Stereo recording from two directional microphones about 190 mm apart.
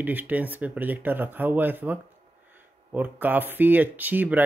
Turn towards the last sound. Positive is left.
turn(degrees=-10)  # may be behind; listen again after turning